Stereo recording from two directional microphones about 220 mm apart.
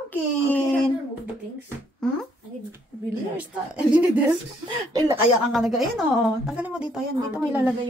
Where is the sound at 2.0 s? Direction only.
Centre (ahead or behind).